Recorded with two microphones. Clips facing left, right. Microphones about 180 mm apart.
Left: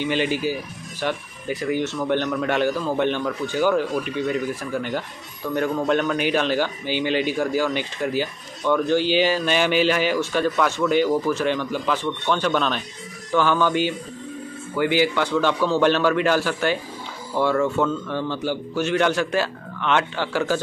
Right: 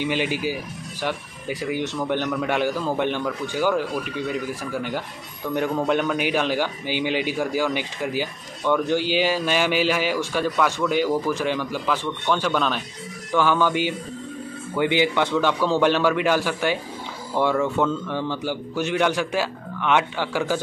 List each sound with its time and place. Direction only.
0.0 s a man's voice: 10° right (ahead or behind)